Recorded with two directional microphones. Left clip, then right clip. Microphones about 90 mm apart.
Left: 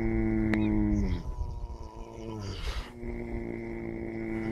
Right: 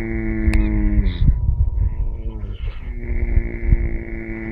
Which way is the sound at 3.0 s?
60° left (ahead or behind).